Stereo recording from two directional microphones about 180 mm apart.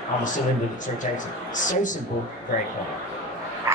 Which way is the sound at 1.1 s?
45° left (ahead or behind).